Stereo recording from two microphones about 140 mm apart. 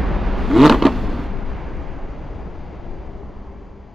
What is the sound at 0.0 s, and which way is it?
Vehicle, centre (ahead or behind).